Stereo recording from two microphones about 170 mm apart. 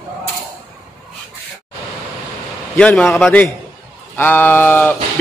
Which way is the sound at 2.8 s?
5° left (ahead or behind).